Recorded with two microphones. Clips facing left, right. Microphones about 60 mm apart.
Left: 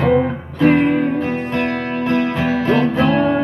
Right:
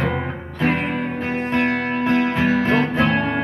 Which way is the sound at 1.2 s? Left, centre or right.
Right.